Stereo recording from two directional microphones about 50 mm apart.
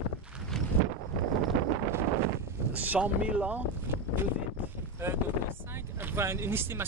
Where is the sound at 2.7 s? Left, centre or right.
Right.